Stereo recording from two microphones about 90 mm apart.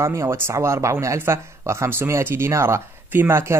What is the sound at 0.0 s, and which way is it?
Speech, 30° right (ahead or behind).